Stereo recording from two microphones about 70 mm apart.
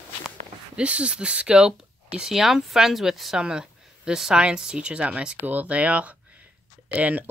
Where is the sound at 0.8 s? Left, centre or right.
Centre.